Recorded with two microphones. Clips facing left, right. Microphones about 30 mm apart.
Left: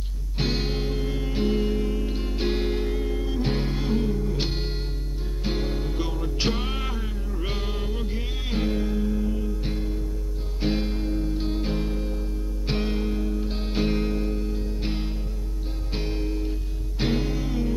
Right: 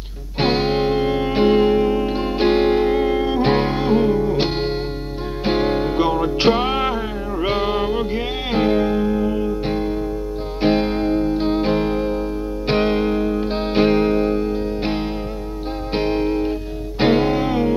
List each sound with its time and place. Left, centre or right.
0.4 s music: right